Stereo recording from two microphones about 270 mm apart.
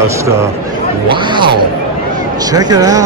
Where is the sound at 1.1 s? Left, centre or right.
Centre.